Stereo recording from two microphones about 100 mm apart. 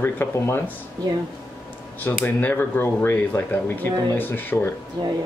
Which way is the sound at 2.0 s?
20° left (ahead or behind).